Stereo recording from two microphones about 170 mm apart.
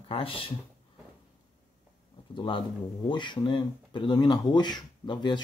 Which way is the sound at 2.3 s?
30° left (ahead or behind).